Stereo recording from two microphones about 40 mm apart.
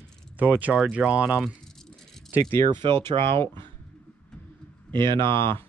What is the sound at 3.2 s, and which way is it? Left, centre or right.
Speech, left.